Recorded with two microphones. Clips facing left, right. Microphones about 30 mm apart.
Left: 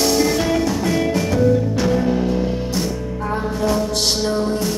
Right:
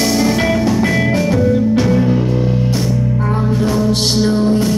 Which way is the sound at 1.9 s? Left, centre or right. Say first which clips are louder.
Right 4 dB; centre.